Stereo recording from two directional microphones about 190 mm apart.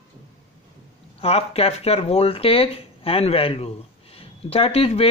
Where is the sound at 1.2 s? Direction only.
30° left (ahead or behind).